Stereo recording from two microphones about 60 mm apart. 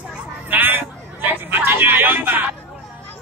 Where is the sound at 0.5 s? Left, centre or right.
Right.